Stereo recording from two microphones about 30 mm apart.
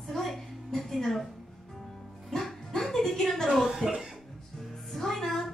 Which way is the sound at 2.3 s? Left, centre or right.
Centre.